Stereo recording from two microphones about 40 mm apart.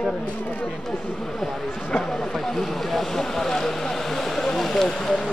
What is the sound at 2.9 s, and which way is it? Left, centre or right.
Speech, centre.